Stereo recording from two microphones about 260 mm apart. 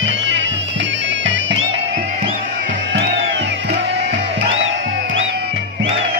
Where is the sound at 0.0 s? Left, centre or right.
Right.